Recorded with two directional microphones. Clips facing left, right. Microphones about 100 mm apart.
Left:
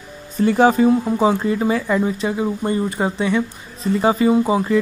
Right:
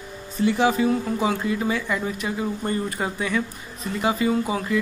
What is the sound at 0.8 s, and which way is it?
Speech, 25° left (ahead or behind).